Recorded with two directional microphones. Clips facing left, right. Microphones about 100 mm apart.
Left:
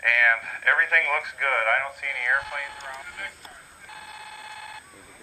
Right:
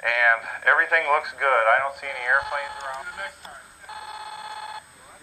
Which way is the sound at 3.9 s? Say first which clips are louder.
Right 6 dB; 15° right (ahead or behind).